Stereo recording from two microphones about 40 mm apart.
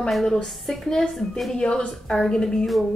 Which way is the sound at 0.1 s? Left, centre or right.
Centre.